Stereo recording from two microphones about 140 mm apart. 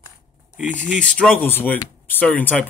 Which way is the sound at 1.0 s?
5° left (ahead or behind).